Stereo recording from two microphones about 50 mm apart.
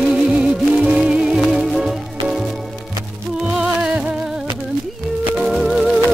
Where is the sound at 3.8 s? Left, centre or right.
Right.